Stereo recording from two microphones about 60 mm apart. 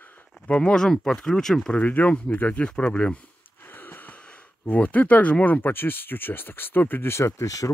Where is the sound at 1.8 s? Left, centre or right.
Left.